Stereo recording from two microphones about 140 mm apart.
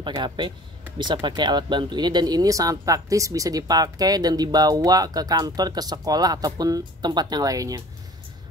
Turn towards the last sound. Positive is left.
turn(degrees=-25)  # may be behind; listen again after turning